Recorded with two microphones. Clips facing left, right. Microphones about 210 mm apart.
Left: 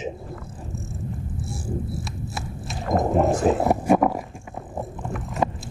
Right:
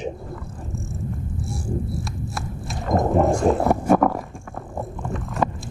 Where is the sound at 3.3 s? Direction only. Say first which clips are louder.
Right 1 dB; 5° left (ahead or behind).